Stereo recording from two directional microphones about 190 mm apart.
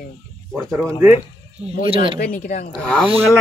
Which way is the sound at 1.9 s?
30° right (ahead or behind).